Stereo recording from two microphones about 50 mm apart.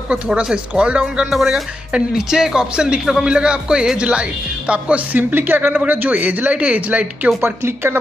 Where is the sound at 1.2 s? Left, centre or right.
Centre.